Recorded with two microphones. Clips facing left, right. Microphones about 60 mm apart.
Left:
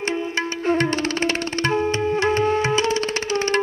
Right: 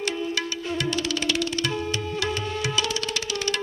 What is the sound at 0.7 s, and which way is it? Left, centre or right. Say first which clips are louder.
Tabla: left 8 dB; left.